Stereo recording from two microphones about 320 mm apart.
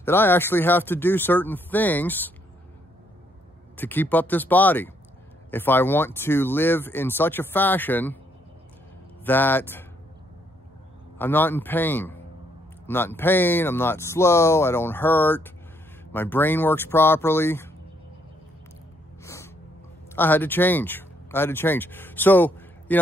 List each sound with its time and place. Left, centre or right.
0.0 s speech: centre
3.7 s speech: centre
9.2 s speech: centre
11.1 s speech: centre
19.2 s gasp: centre
20.2 s speech: centre